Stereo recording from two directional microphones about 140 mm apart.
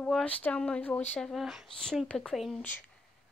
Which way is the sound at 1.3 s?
Centre (ahead or behind).